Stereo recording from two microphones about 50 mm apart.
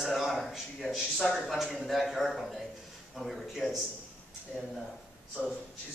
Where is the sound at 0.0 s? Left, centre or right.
Centre.